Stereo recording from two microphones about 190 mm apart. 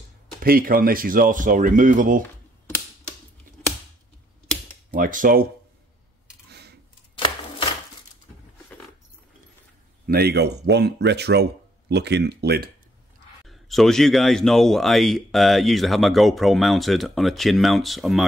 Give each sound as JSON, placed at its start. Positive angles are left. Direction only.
{"t": 0.4, "sound": "speech", "side_deg": -50}
{"t": 4.9, "sound": "speech", "side_deg": -45}
{"t": 7.2, "sound": "a sound", "side_deg": 25}
{"t": 10.0, "sound": "speech", "side_deg": -55}
{"t": 13.5, "sound": "a man's voice", "side_deg": 0}